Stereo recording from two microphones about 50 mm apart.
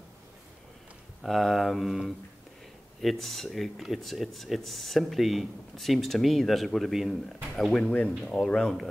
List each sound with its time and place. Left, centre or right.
1.2 s speech: centre
3.0 s speech: centre
7.7 s speech: left